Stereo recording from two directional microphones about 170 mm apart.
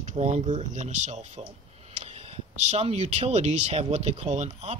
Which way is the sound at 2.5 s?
40° right (ahead or behind).